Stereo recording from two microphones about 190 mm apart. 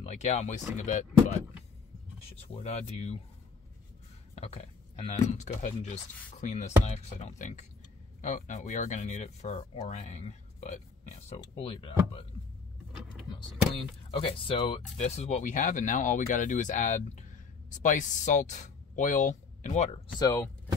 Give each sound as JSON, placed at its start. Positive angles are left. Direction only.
{"t": 0.0, "sound": "speech", "side_deg": 40}
{"t": 2.5, "sound": "speech", "side_deg": 35}
{"t": 4.4, "sound": "speech", "side_deg": 30}
{"t": 13.7, "sound": "speech", "side_deg": 25}
{"t": 20.2, "sound": "speech", "side_deg": 20}